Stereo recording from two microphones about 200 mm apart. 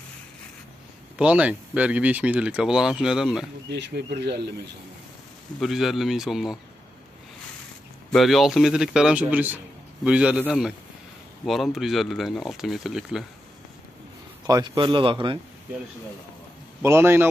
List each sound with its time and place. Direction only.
1.1 s speech: 5° right (ahead or behind)
3.6 s speech: 60° right (ahead or behind)
5.6 s speech: centre (ahead or behind)
8.1 s speech: centre (ahead or behind)
11.4 s speech: centre (ahead or behind)
14.4 s speech: 20° right (ahead or behind)
16.8 s a man's voice: 15° right (ahead or behind)